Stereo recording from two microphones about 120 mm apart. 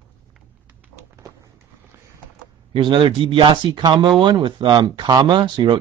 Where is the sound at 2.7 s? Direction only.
45° right (ahead or behind).